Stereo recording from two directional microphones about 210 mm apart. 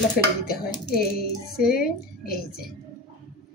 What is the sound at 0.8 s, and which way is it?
Speech, 45° left (ahead or behind).